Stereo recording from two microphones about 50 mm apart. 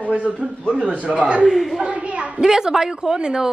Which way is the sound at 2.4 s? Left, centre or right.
Centre.